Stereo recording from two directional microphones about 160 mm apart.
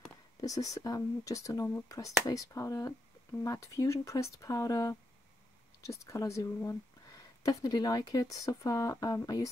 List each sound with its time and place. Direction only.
0.4 s speech: 20° left (ahead or behind)